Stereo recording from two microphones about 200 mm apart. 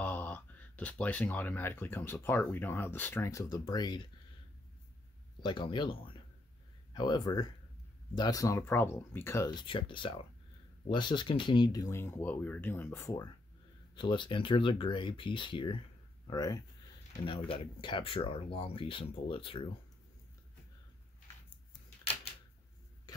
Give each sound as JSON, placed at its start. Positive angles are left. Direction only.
{"t": 0.0, "sound": "speech", "side_deg": 10}
{"t": 5.4, "sound": "speech", "side_deg": 25}